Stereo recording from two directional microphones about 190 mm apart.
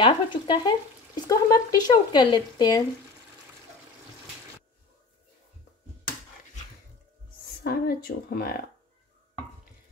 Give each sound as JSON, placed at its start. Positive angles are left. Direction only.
{"t": 0.0, "sound": "speech", "side_deg": 25}
{"t": 7.6, "sound": "speech", "side_deg": 50}